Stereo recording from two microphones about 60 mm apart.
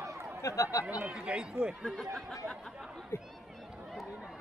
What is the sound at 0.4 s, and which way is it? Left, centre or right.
Speech, left.